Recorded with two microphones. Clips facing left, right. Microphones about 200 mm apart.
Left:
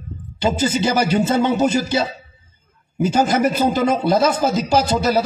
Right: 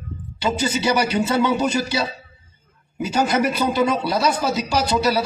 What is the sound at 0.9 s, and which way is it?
Speech, 45° left (ahead or behind).